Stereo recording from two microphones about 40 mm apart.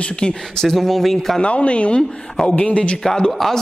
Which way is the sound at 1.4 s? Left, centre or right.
Left.